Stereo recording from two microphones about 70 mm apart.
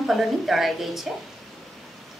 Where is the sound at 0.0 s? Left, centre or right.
Centre.